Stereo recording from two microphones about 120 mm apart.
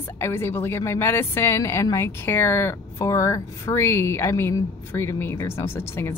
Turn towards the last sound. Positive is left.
turn(degrees=20)  # may be behind; listen again after turning